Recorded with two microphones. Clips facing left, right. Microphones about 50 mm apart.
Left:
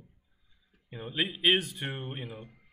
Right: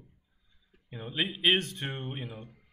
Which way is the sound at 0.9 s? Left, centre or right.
Centre.